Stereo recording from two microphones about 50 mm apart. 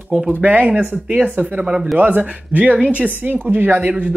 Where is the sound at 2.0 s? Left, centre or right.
Right.